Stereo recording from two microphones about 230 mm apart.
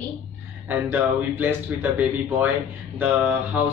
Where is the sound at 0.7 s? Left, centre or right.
Centre.